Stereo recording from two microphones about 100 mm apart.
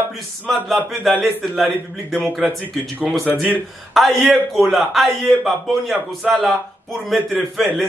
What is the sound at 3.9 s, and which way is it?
A man's voice, centre (ahead or behind).